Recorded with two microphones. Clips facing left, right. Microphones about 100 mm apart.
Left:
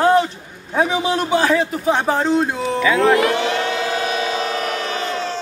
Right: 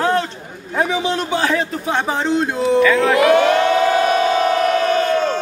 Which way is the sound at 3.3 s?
50° right (ahead or behind).